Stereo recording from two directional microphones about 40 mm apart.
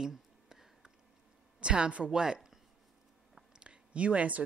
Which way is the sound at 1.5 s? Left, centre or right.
Right.